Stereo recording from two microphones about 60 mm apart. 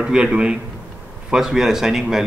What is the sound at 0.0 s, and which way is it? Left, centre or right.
Speech, centre.